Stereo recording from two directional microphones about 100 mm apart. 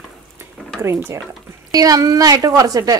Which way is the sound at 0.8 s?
25° right (ahead or behind).